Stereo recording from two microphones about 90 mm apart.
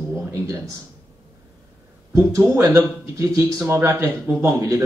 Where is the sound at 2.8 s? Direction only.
30° right (ahead or behind).